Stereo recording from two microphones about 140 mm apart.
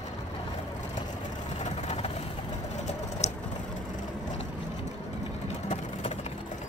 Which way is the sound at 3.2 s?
55° left (ahead or behind).